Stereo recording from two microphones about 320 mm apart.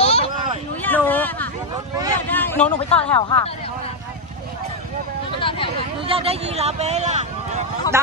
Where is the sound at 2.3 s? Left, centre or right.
Centre.